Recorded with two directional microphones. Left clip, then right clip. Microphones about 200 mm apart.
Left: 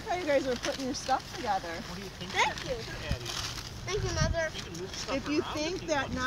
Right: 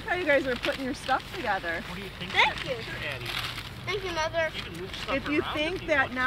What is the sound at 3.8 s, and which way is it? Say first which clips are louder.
Speech: right 3 dB; 5° right (ahead or behind).